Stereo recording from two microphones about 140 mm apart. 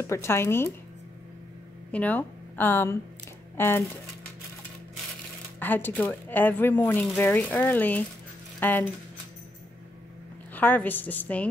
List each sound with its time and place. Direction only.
0.0 s speech: 20° left (ahead or behind)
1.9 s speech: 10° left (ahead or behind)
5.6 s speech: 15° left (ahead or behind)
10.5 s speech: 10° left (ahead or behind)